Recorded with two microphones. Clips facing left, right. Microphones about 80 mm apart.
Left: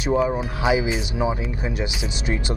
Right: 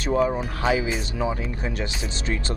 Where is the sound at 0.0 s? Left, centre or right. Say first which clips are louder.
Left 1 dB; centre.